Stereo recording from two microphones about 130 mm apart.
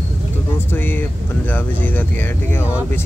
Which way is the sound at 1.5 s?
15° left (ahead or behind).